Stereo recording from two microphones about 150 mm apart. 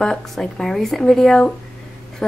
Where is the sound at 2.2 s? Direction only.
5° left (ahead or behind).